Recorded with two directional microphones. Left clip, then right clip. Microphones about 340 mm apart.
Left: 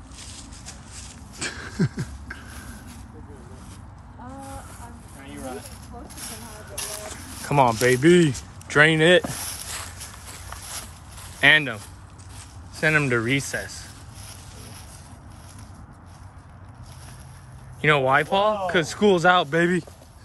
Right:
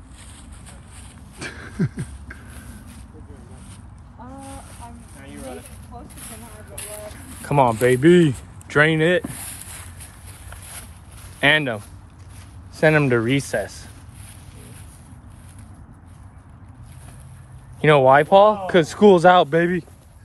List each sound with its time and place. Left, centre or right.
0.2 s vehicle: centre
1.4 s a sound: centre
5.2 s vehicle: centre
6.0 s a sound: centre
7.4 s speech: centre
11.3 s speech: centre
17.7 s speech: centre